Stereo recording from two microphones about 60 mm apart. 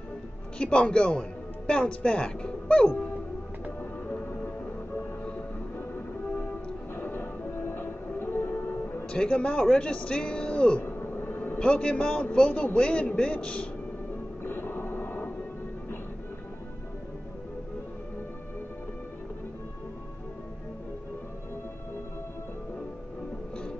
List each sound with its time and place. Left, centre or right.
0.6 s speech: centre
4.1 s music: left
5.8 s music: left
9.1 s a man's voice: centre
10.8 s a sound: left
11.6 s a man's voice: centre
14.4 s a sound: left